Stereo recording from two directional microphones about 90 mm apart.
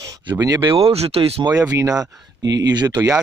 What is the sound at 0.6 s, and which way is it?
Speech, 80° right.